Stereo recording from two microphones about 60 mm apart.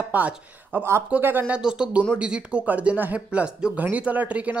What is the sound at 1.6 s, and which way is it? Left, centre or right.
Speech, centre.